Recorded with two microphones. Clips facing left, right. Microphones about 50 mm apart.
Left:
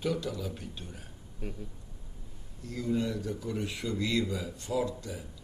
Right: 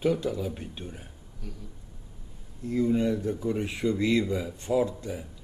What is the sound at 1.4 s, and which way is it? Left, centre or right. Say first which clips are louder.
Speech: left 3 dB; left.